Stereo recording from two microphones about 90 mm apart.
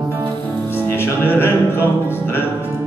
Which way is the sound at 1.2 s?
25° left (ahead or behind).